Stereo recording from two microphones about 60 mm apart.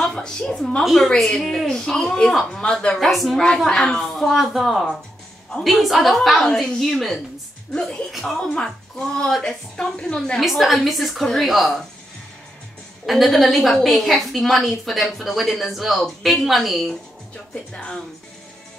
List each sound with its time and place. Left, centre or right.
0.0 s a woman's voice: centre
3.1 s a woman's voice: centre
7.7 s a woman's voice: centre
8.1 s a woman's voice: centre
10.4 s a woman's voice: centre
13.0 s a woman's voice: centre
17.7 s a woman's voice: centre